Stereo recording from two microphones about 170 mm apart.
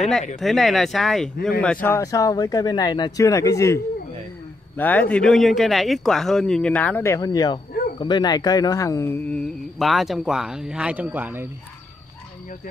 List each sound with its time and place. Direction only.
0.4 s speech: centre (ahead or behind)